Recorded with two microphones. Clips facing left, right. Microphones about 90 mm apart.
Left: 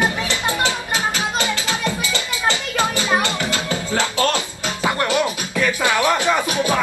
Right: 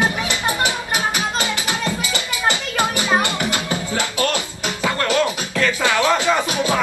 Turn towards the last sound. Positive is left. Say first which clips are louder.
# even
turn(degrees=15)  # may be behind; listen again after turning